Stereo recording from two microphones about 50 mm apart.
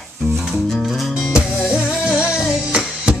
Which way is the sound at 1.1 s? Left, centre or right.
Centre.